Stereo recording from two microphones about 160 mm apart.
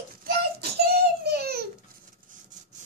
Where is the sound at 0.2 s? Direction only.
85° right.